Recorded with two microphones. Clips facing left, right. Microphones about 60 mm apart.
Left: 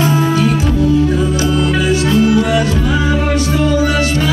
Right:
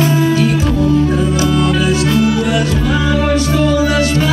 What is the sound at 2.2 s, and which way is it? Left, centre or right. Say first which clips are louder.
Music: left 2 dB; left.